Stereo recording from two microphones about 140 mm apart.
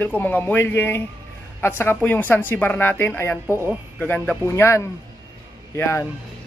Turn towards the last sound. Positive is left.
turn(degrees=20)  # may be behind; listen again after turning